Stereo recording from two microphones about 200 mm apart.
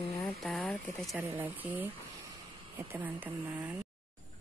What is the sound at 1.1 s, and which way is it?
Speech, 10° right (ahead or behind).